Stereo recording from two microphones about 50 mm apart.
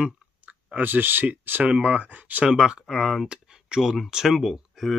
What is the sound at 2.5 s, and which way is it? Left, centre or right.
Speech, centre.